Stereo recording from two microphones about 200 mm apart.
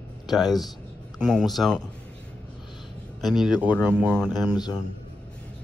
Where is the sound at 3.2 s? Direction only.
Centre (ahead or behind).